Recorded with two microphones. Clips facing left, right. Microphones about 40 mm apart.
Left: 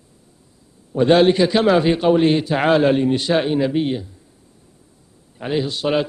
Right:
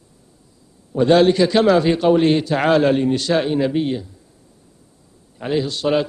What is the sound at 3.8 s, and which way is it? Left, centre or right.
Speech, centre.